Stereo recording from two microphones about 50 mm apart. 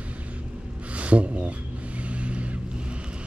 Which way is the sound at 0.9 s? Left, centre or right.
Right.